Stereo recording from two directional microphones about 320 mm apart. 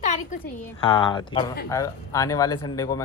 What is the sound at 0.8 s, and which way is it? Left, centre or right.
Speech, centre.